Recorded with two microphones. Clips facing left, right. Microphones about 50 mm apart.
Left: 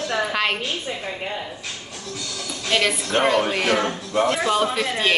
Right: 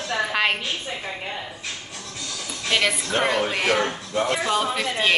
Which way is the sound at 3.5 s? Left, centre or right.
Centre.